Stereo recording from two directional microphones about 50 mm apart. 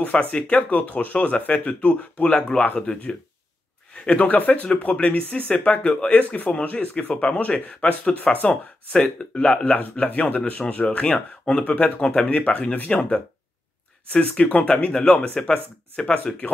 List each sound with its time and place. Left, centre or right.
0.0 s speech: left
3.9 s a sound: left
4.2 s speech: left
5.8 s speech: centre
8.9 s speech: left